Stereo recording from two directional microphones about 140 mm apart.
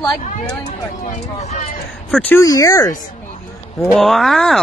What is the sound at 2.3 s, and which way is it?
Speech, 25° left (ahead or behind).